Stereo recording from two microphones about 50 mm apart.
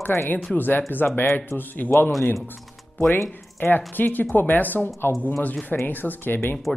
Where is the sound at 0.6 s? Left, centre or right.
Left.